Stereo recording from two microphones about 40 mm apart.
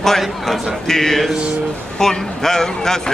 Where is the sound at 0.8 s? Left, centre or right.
Centre.